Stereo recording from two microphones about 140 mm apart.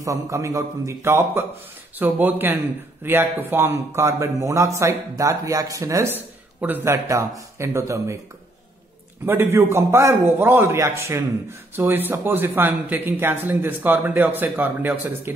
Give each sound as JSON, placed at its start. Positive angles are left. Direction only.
{"t": 0.0, "sound": "a man's voice", "side_deg": -20}
{"t": 9.2, "sound": "a man's voice", "side_deg": -15}